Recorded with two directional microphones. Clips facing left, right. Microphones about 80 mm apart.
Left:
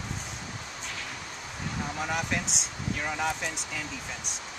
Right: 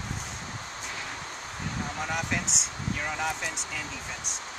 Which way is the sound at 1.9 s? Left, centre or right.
Centre.